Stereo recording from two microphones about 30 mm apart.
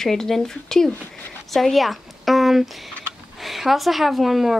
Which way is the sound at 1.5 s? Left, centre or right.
Centre.